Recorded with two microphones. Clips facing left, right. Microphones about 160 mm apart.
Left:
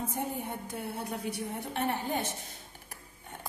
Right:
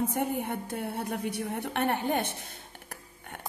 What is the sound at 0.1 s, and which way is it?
A woman's voice, 65° right (ahead or behind).